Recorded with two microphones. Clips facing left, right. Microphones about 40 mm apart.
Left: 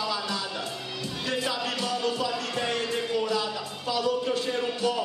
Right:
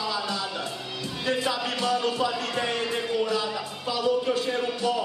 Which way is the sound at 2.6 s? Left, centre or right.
Centre.